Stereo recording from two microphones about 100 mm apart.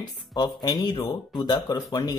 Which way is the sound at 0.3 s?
45° left (ahead or behind).